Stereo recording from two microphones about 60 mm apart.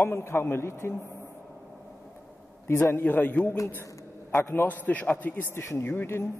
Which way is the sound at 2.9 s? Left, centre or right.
Left.